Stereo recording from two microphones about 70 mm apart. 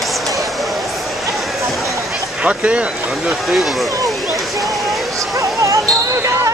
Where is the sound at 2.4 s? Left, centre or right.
Centre.